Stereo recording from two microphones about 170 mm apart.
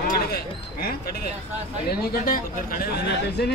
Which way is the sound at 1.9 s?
60° left (ahead or behind).